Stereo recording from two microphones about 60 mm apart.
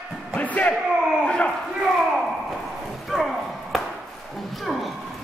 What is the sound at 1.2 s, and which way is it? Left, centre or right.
Crowd, centre.